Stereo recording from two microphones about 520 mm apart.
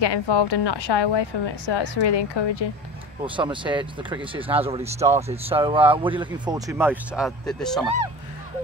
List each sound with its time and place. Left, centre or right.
0.0 s a woman's voice: left
3.3 s speech: centre